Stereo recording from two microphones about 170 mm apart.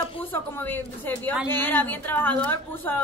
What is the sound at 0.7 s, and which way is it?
A woman's voice, 10° left (ahead or behind).